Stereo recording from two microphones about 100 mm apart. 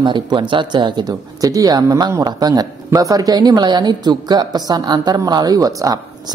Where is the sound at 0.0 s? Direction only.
50° right (ahead or behind).